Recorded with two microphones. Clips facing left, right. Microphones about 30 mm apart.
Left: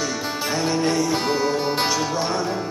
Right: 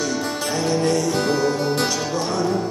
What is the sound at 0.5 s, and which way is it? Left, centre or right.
Music, centre.